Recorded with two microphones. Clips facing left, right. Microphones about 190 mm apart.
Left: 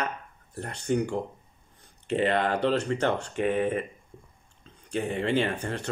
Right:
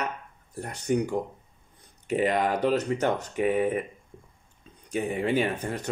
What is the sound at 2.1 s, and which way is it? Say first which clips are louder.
Speech: even; 10° right (ahead or behind).